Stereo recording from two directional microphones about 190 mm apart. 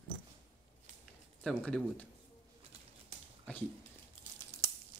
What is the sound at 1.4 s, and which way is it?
Speech, 5° left (ahead or behind).